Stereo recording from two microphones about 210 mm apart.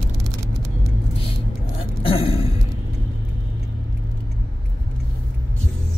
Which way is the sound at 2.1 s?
25° left (ahead or behind).